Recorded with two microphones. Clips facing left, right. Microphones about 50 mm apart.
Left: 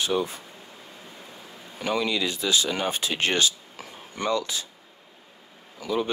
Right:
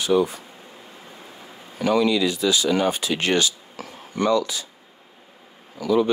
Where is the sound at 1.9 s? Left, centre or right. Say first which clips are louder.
Right 6 dB; left.